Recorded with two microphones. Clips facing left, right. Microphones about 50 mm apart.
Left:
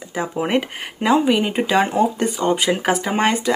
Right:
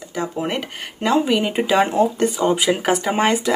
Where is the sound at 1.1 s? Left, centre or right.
Centre.